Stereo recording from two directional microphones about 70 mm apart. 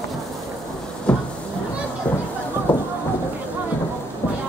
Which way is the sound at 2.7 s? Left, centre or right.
Left.